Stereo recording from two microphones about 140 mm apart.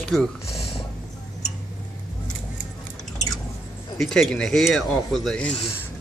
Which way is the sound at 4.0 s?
5° left (ahead or behind).